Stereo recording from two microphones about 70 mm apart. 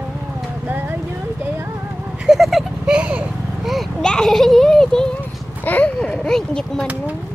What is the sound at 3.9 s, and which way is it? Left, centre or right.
Children playing, centre.